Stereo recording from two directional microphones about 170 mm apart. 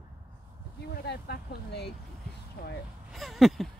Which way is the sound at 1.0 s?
70° left (ahead or behind).